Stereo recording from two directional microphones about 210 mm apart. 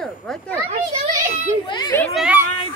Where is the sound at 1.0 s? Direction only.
35° right (ahead or behind).